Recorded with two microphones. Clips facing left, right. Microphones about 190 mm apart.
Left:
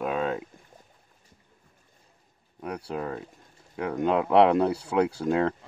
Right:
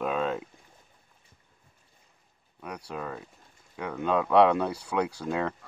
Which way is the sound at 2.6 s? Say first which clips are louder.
Left 5 dB; 30° left (ahead or behind).